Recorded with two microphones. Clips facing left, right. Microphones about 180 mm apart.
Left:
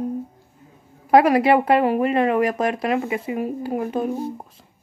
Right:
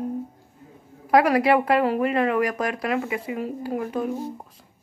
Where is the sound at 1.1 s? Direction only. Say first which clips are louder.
Left 3 dB; 25° left (ahead or behind).